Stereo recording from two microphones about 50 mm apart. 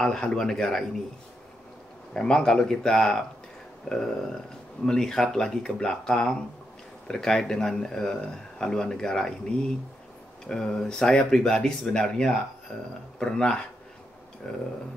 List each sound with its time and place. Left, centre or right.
0.0 s speech: centre
2.1 s speech: centre
12.7 s speech: left
13.2 s speech: centre